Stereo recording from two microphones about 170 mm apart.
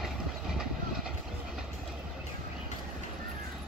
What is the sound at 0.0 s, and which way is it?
Train, centre (ahead or behind).